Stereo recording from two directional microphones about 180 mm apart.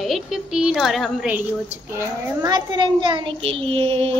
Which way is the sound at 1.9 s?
15° right (ahead or behind).